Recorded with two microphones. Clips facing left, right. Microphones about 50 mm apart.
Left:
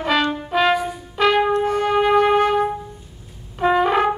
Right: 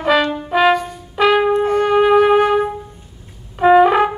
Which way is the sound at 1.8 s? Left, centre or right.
Centre.